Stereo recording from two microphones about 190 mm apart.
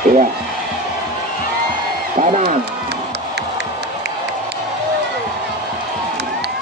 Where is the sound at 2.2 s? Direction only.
40° right (ahead or behind).